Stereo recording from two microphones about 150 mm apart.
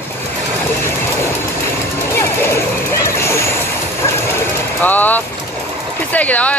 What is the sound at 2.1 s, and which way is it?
Vehicle, 15° left (ahead or behind).